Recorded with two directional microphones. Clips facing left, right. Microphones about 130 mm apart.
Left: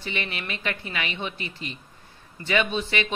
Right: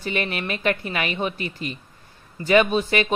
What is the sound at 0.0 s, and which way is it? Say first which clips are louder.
Speech: right 6 dB; 45° right (ahead or behind).